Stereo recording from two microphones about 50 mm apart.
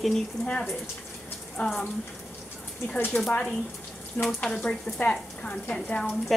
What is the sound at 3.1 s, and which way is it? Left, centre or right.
Speech, left.